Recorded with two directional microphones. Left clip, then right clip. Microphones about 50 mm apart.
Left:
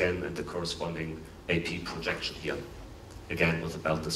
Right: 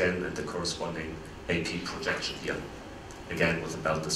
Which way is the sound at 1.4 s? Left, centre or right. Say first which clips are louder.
Even; right.